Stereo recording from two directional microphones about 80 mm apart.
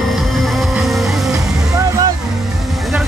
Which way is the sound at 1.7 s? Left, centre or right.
Right.